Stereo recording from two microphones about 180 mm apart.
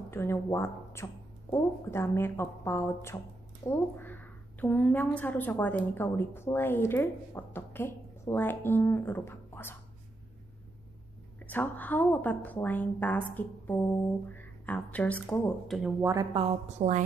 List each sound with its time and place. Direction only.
0.1 s a woman's voice: 15° left (ahead or behind)
11.4 s a woman's voice: 10° left (ahead or behind)
16.0 s speech: 15° right (ahead or behind)
16.3 s a woman's voice: 35° right (ahead or behind)